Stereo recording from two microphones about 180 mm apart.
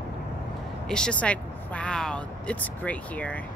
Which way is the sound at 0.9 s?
5° left (ahead or behind).